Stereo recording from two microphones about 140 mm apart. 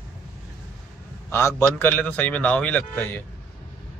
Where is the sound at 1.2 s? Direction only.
15° left (ahead or behind).